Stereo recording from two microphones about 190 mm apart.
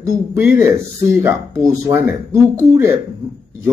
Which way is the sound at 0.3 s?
10° right (ahead or behind).